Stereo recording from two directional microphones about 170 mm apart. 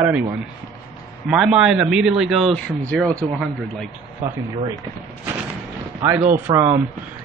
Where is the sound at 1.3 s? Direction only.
5° right (ahead or behind).